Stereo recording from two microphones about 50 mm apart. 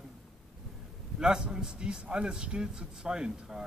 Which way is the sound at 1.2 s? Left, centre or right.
Centre.